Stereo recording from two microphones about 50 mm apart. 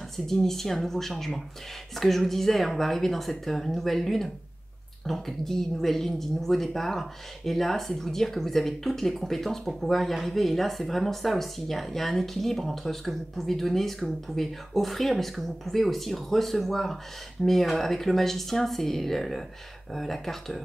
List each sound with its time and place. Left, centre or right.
0.3 s speech: centre